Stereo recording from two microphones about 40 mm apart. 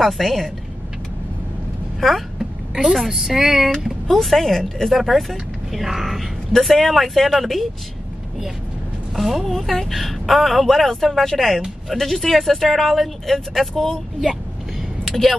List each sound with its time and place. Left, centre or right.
0.0 s speech: centre
2.0 s speech: centre
2.3 s a sound: centre
2.9 s speech: centre
4.1 s speech: centre
9.1 s speech: centre
15.0 s speech: centre